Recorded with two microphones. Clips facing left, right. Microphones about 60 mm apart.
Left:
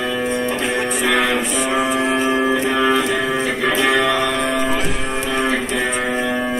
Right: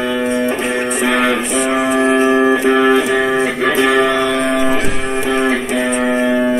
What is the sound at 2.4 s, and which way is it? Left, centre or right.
Music, right.